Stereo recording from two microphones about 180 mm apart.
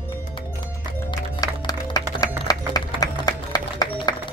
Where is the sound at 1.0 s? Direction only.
20° left (ahead or behind).